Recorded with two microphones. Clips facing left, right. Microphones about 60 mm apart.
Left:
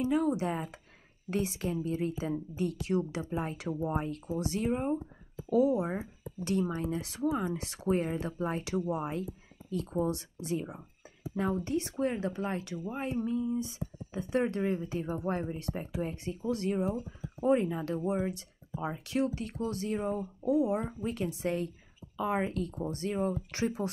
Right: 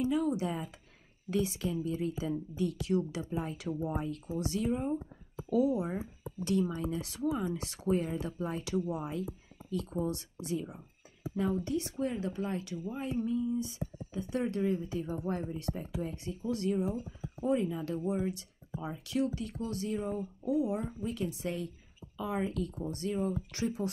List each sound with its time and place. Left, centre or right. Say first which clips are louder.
0.0 s speech: left 2 dB; left
6.7 s speech: left 2 dB; left
11.6 s speech: left 2 dB; left
12.9 s speech: left 1 dB; left
16.4 s speech: left 1 dB; left
17.4 s speech: left 3 dB; left
20.1 s speech: left 3 dB; left
21.3 s a woman's voice: left 4 dB; left
22.1 s speech: left 3 dB; left
22.8 s speech: left 2 dB; left